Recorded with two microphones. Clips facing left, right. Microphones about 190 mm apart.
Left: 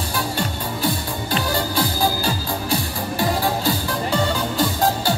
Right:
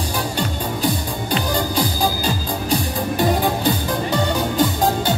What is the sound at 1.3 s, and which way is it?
Music, 15° right (ahead or behind).